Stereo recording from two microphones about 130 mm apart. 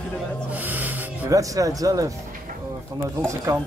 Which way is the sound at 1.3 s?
25° right (ahead or behind).